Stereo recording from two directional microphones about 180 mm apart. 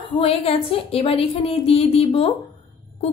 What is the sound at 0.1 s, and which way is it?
A woman's voice, 30° left (ahead or behind).